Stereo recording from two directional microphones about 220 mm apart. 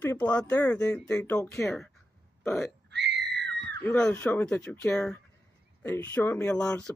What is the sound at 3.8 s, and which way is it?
Speech, 10° left (ahead or behind).